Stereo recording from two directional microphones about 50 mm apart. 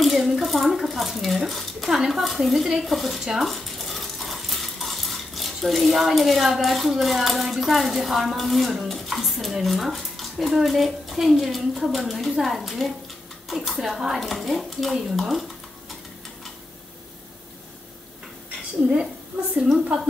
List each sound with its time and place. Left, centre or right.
0.0 s a sound: centre
1.9 s speech: centre
3.3 s cutlery: centre
9.6 s speech: centre